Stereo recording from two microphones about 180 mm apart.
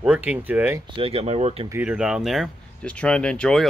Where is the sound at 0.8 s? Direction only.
30° right (ahead or behind).